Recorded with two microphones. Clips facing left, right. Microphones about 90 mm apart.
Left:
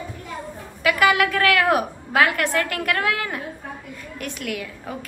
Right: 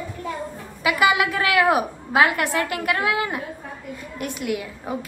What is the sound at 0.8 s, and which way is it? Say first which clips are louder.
A woman's voice: left 1 dB; 15° right (ahead or behind).